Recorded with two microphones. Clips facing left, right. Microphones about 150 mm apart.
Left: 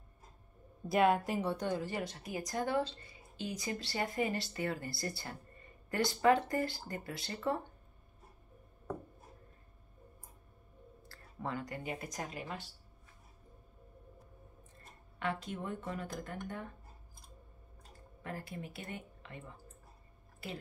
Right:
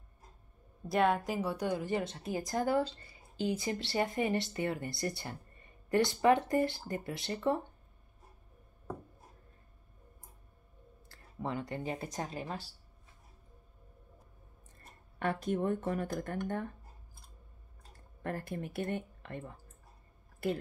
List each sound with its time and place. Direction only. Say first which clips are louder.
0.8 s a woman's voice: even; centre (ahead or behind); by 7.6 s 20° right (ahead or behind)
11.1 s speech: right 2 dB; 25° right (ahead or behind)
15.4 s speech: right 9 dB; 50° right (ahead or behind)
18.2 s speech: right 6 dB; 50° right (ahead or behind)